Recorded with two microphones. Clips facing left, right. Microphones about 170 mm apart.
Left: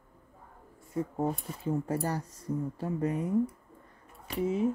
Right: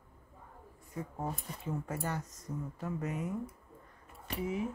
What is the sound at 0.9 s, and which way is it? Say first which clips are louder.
Speech: left 8 dB; 30° left (ahead or behind).